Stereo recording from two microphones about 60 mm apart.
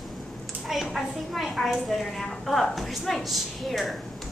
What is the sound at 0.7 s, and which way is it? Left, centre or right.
A woman's voice, centre.